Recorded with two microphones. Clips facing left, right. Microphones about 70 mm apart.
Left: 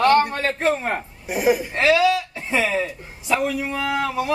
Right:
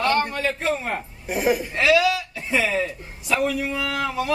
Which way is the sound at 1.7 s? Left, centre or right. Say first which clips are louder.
Left 1 dB; left.